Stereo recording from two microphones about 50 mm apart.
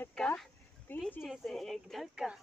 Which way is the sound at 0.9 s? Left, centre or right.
Left.